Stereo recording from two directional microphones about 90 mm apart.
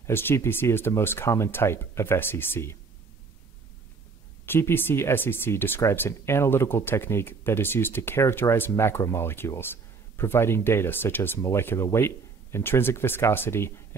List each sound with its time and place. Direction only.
0.0 s speech: 25° left (ahead or behind)
4.5 s speech: 25° left (ahead or behind)